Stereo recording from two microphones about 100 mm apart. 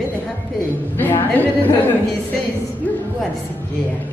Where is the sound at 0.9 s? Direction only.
20° left (ahead or behind).